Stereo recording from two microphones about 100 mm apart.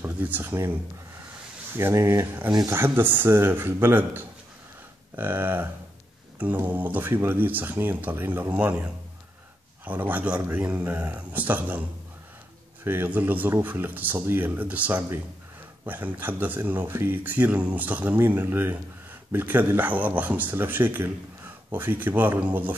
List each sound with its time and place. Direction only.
0.0 s speech: 20° right (ahead or behind)
1.8 s speech: 25° right (ahead or behind)
9.8 s speech: 15° right (ahead or behind)
12.8 s speech: 20° right (ahead or behind)